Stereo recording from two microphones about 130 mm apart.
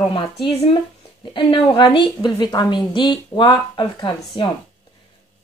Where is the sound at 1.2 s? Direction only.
40° left (ahead or behind).